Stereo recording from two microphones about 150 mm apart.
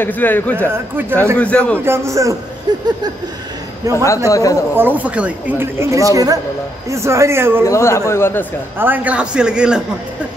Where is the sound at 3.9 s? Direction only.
20° left (ahead or behind).